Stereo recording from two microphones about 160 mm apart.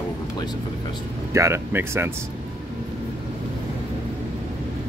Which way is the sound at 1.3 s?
15° right (ahead or behind).